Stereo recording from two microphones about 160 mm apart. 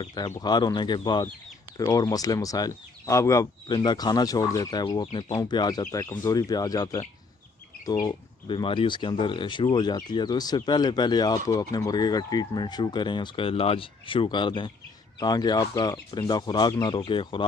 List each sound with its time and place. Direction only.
0.0 s speech: 25° left (ahead or behind)